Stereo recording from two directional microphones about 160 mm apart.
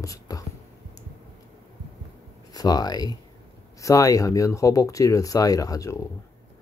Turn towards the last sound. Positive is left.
turn(degrees=20)  # may be behind; listen again after turning